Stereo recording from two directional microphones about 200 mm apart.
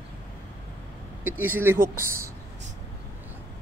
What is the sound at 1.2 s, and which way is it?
Speech, 10° right (ahead or behind).